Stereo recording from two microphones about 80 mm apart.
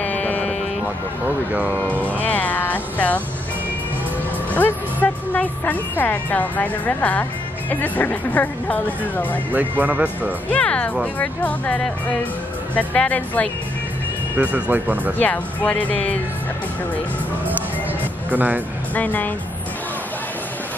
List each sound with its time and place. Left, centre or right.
0.0 s music: centre
1.5 s speech: centre
1.8 s a woman's voice: centre
4.6 s a woman's voice: left
9.5 s speech: right
10.5 s a woman's voice: centre
14.4 s speech: centre
15.1 s speech: centre
18.3 s speech: right
18.9 s a woman's voice: left